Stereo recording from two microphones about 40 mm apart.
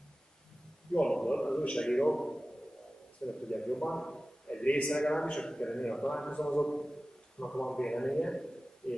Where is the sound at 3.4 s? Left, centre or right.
Centre.